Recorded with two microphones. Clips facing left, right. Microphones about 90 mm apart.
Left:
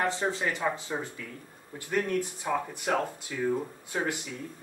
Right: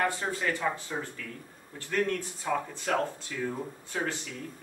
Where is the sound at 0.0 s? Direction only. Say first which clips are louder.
Left 1 dB; 20° left (ahead or behind).